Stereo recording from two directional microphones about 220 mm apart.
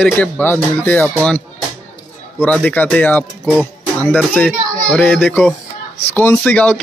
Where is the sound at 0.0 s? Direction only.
10° left (ahead or behind).